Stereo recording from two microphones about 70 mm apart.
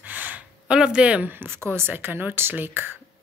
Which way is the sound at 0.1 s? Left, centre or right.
Right.